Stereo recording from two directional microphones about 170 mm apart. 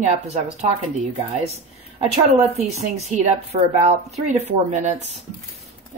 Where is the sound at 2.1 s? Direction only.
40° right (ahead or behind).